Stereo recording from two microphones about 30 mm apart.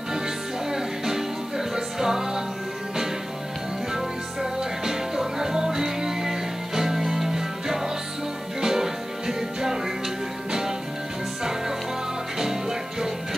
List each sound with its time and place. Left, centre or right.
0.7 s music: centre
4.8 s music: centre
12.4 s music: centre